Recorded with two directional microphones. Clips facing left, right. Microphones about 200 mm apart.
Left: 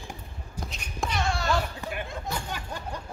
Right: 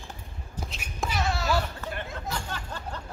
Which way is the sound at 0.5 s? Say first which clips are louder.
Left 1 dB; 5° right (ahead or behind).